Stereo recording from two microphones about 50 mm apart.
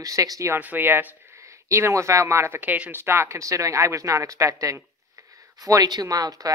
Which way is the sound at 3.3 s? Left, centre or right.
Right.